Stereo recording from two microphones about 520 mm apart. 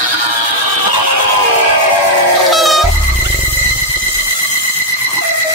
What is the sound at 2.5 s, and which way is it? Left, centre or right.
Music, centre.